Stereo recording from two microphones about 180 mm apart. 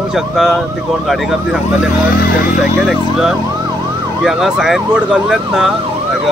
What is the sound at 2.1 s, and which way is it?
Speech, 55° left (ahead or behind).